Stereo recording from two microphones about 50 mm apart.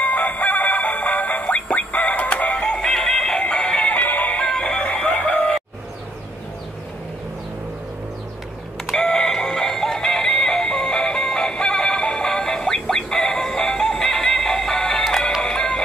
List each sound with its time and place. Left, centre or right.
0.0 s music: left
4.4 s music: centre
8.9 s synthetic singing: centre
15.4 s music: centre